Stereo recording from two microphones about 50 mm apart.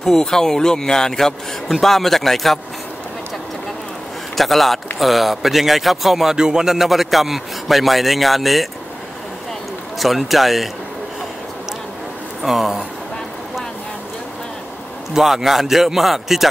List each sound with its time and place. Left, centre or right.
0.0 s speech: centre
4.4 s speech: centre
9.9 s speech: centre
12.4 s speech: centre
15.1 s speech: centre